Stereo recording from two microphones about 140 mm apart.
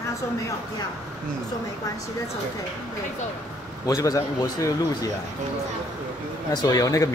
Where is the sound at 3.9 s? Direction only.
25° left (ahead or behind).